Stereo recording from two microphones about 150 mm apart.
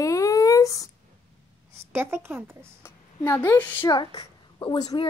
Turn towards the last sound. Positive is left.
turn(degrees=30)  # may be behind; listen again after turning